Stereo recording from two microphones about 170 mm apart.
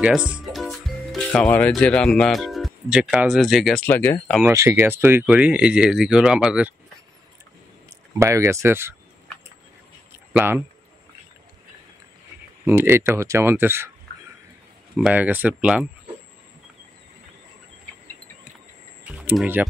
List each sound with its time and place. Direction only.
0.0 s speech: 5° right (ahead or behind)
3.8 s speech: 10° left (ahead or behind)
4.4 s speech: 15° right (ahead or behind)
8.2 s speech: 15° right (ahead or behind)
10.1 s a sound: 10° right (ahead or behind)
12.6 s speech: 15° right (ahead or behind)
15.0 s speech: 5° right (ahead or behind)
19.0 s speech: 5° right (ahead or behind)